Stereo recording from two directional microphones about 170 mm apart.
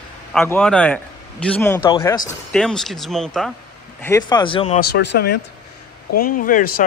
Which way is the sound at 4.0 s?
20° left (ahead or behind).